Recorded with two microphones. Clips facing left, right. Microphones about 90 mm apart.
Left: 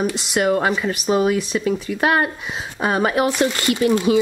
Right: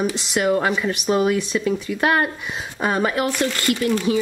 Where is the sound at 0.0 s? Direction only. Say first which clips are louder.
Left 1 dB; 5° left (ahead or behind).